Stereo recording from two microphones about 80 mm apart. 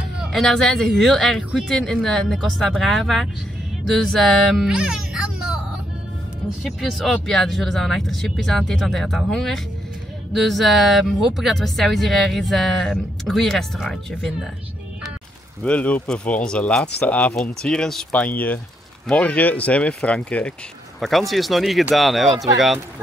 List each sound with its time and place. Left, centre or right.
0.3 s speech: centre
6.8 s speech: centre
15.6 s speech: centre
18.1 s speech: centre
21.0 s speech: centre